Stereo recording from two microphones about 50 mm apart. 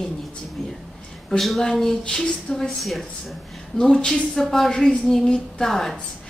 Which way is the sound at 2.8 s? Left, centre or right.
Centre.